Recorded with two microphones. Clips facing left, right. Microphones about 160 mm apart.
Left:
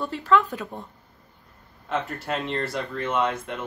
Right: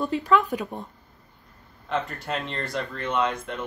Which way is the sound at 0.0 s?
15° right (ahead or behind).